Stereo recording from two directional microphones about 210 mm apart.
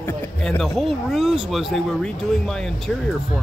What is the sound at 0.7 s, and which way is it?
Speech, centre (ahead or behind).